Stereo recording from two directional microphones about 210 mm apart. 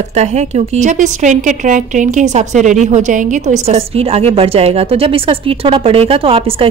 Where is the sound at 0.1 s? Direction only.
30° right (ahead or behind).